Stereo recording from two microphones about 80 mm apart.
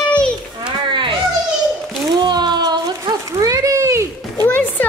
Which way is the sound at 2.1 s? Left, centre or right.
Right.